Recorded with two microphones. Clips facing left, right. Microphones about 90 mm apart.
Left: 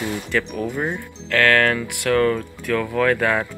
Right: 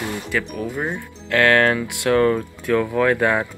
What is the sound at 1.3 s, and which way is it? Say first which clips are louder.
Speech: right 1 dB; 20° right (ahead or behind).